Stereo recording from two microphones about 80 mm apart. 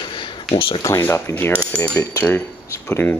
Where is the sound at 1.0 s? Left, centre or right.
Left.